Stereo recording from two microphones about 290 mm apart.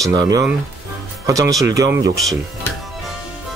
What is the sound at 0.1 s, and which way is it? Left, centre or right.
Speech, centre.